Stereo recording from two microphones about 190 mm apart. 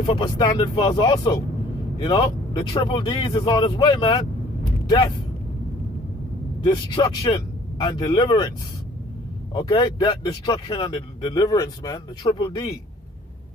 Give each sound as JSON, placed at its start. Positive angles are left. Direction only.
{"t": 0.0, "sound": "speech", "side_deg": 25}
{"t": 6.6, "sound": "speech", "side_deg": 25}
{"t": 9.6, "sound": "speech", "side_deg": 25}